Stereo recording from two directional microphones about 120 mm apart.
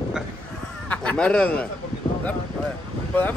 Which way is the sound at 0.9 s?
10° left (ahead or behind).